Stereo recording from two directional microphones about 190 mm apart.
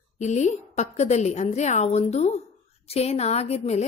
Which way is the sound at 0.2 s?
40° left (ahead or behind).